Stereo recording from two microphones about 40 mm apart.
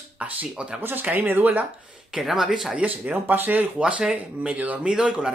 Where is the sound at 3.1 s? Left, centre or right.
Right.